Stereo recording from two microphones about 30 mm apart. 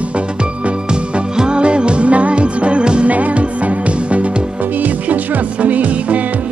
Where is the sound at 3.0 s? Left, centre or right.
Right.